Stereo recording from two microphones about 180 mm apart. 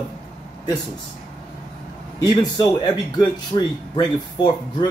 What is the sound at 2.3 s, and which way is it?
Speech, 20° left (ahead or behind).